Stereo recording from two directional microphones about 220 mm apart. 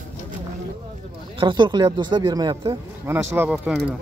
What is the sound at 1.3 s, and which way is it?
Speech, 20° right (ahead or behind).